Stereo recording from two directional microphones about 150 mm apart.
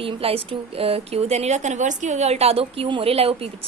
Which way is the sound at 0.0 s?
40° right (ahead or behind).